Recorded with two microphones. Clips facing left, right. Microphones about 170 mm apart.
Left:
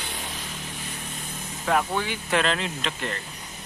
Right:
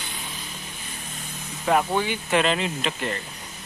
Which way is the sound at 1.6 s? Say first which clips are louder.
Right 3 dB; 10° right (ahead or behind).